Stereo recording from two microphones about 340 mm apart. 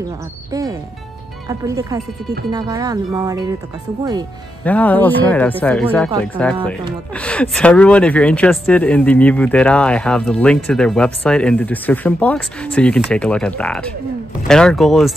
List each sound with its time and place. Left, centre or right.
0.5 s speech: centre
4.6 s speech: centre